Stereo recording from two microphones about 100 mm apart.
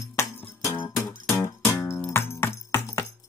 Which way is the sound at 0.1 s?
30° left (ahead or behind).